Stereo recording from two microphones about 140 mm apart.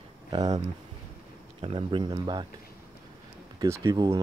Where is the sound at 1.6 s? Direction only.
40° right (ahead or behind).